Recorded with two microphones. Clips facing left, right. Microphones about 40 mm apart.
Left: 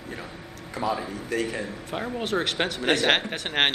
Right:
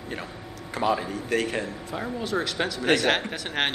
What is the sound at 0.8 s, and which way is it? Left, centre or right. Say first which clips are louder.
Speech: right 3 dB; right.